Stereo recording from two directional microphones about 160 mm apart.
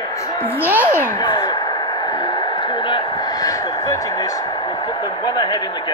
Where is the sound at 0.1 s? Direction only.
20° left (ahead or behind).